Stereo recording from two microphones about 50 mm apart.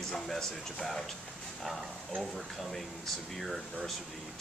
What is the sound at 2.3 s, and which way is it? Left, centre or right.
Speech, centre.